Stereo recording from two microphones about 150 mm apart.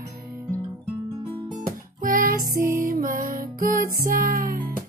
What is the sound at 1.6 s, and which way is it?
Music, 65° right (ahead or behind).